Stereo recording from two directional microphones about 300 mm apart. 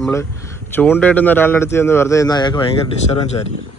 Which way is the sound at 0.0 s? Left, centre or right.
Centre.